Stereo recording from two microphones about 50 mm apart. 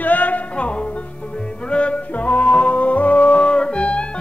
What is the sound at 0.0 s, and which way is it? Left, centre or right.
Music, left.